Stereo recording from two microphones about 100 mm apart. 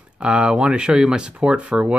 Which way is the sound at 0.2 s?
10° right (ahead or behind).